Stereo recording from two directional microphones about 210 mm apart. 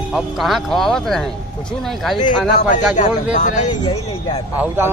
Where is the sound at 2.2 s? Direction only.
35° left (ahead or behind).